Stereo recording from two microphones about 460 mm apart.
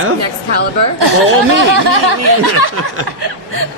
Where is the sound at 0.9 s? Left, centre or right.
Right.